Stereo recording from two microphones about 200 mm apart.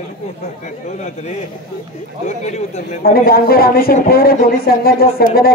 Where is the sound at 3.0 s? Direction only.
50° left (ahead or behind).